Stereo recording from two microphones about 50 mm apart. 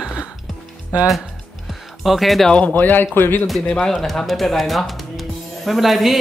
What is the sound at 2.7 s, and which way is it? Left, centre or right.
Speech, left.